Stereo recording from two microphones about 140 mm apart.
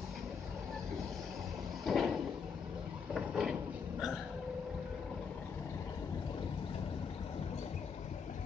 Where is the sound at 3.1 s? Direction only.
5° right (ahead or behind).